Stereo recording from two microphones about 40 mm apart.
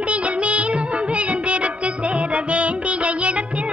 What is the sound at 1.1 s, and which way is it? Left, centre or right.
Music, right.